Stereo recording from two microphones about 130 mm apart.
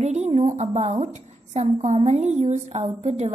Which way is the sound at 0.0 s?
60° right (ahead or behind).